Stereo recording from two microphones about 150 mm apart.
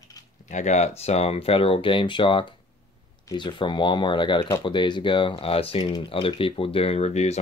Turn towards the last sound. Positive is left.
turn(degrees=45)  # may be behind; listen again after turning